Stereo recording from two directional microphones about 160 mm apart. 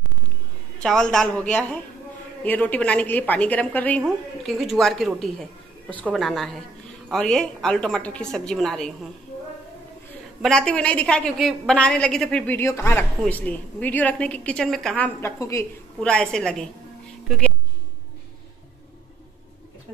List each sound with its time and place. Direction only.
0.8 s a woman's voice: centre (ahead or behind)
10.4 s a woman's voice: 5° left (ahead or behind)
15.1 s a woman's voice: 15° left (ahead or behind)
16.0 s a woman's voice: 5° left (ahead or behind)